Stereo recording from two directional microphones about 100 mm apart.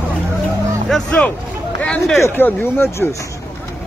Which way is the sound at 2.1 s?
25° left (ahead or behind).